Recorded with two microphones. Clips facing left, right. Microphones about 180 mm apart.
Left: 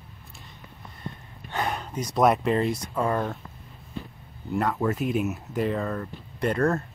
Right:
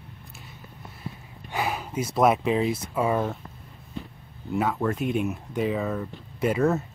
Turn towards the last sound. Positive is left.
turn(degrees=-5)  # may be behind; listen again after turning